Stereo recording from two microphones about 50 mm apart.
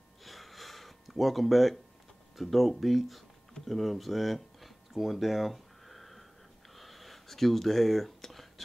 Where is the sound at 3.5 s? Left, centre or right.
Centre.